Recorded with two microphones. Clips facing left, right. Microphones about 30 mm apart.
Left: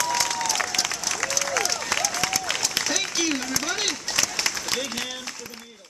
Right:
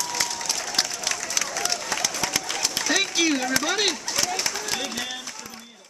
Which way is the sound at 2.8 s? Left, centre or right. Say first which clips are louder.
Right 7 dB; right.